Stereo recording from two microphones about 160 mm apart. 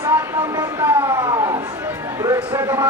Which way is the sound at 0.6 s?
20° right (ahead or behind).